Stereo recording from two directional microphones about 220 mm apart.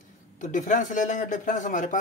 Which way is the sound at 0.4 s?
35° left (ahead or behind).